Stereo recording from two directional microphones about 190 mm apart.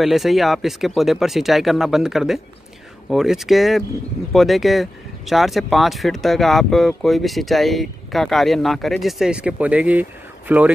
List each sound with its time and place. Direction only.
0.0 s speech: centre (ahead or behind)